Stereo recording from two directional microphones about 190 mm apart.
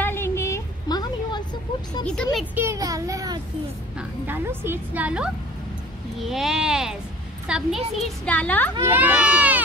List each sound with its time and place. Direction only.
0.0 s vehicle: 10° left (ahead or behind)
2.5 s a sound: 15° right (ahead or behind)
4.0 s speech: 10° right (ahead or behind)
8.3 s speech: 10° left (ahead or behind)
8.8 s speech: 10° right (ahead or behind)